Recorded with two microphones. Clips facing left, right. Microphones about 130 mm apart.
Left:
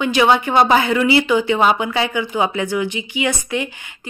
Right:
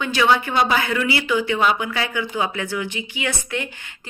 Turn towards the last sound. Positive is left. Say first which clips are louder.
# left 5 dB
turn(degrees=15)  # may be behind; listen again after turning